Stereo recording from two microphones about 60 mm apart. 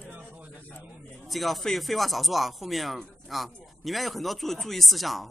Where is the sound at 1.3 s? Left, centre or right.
Centre.